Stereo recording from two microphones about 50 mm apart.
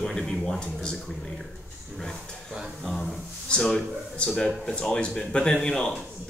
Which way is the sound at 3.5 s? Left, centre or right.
Centre.